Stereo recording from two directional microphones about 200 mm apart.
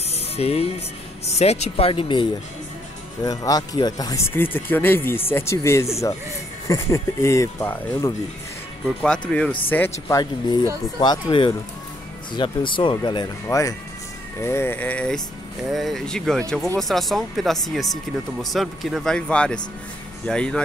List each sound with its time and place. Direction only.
0.1 s music: 30° left (ahead or behind)
1.2 s speech: 30° left (ahead or behind)
3.3 s speech: 20° left (ahead or behind)